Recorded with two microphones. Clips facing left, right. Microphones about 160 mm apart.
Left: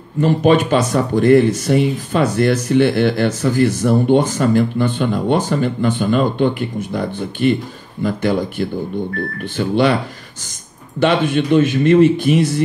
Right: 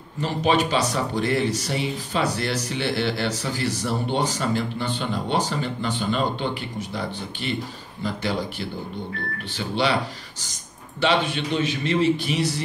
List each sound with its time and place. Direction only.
0.2 s speech: 50° left (ahead or behind)
11.0 s speech: 50° left (ahead or behind)